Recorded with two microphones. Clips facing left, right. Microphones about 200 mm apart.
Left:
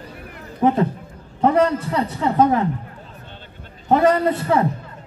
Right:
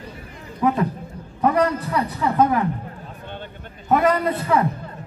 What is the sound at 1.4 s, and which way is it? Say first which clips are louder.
A man's voice: left 2 dB; 25° left (ahead or behind).